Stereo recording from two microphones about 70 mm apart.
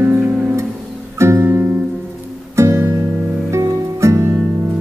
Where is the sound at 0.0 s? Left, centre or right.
Centre.